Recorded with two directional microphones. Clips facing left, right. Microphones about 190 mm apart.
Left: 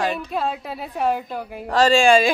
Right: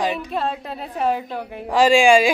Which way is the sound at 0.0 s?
10° right (ahead or behind).